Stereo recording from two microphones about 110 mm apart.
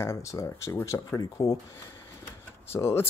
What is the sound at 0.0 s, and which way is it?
Speech, 25° left (ahead or behind).